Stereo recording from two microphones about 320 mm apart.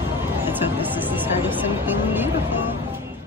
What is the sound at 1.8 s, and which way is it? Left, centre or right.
Speech, centre.